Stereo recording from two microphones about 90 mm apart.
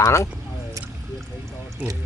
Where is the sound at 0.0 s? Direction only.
35° left (ahead or behind).